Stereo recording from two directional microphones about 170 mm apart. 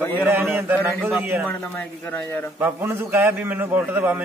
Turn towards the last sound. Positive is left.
turn(degrees=-10)  # may be behind; listen again after turning